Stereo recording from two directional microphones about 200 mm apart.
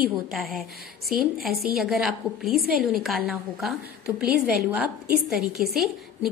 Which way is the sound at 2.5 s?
50° right (ahead or behind).